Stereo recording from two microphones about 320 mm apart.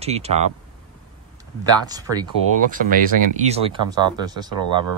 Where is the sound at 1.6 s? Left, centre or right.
Centre.